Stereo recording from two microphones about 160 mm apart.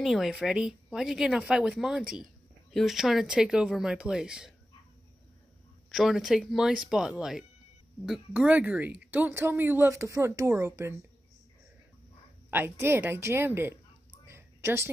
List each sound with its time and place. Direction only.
0.0 s speech: centre (ahead or behind)
5.9 s speech: centre (ahead or behind); by 11.0 s 15° right (ahead or behind)
12.4 s speech: 15° right (ahead or behind)
14.2 s a sound: 15° right (ahead or behind)